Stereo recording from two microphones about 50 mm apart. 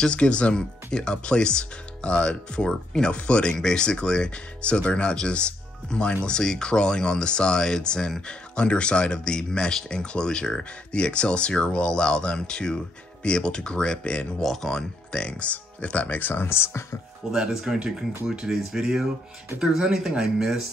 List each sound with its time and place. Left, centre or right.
0.0 s speech: left
14.4 s speech: centre; by 16.2 s left
16.2 s speech: left
17.3 s speech: centre